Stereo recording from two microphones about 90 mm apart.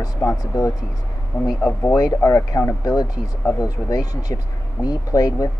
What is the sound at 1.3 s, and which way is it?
Speech, 50° left (ahead or behind).